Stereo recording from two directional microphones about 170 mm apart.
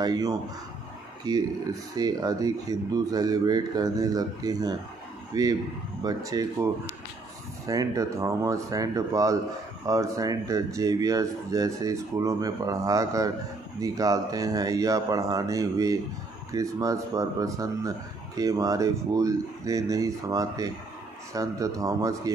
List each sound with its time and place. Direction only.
0.0 s a man's voice: 20° right (ahead or behind)